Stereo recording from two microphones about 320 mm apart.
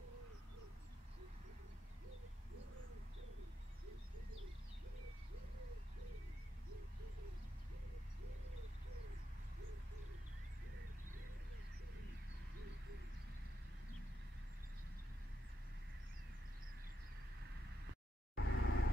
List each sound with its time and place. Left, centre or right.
18.3 s vehicle: left